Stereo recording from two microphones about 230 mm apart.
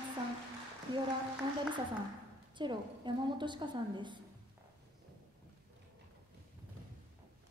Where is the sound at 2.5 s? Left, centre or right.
Centre.